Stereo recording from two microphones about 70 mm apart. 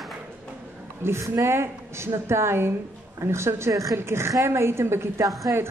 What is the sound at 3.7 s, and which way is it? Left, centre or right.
Speech, right.